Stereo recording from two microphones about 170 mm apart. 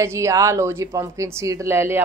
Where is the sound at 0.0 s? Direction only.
15° right (ahead or behind).